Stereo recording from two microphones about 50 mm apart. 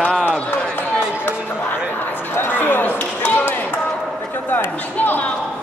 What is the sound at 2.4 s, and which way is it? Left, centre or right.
Basketball bounce, left.